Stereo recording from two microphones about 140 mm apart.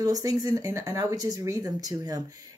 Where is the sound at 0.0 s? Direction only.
25° right (ahead or behind).